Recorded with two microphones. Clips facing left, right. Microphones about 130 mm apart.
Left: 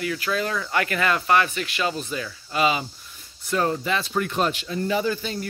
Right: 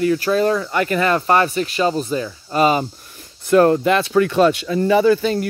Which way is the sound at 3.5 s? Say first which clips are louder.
Right 10 dB; 60° right (ahead or behind).